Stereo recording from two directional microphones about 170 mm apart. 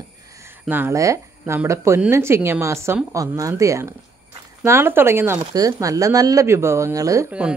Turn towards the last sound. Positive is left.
turn(degrees=-5)  # may be behind; listen again after turning